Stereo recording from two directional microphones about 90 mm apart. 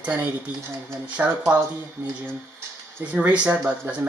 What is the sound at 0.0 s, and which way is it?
Speech, 15° right (ahead or behind).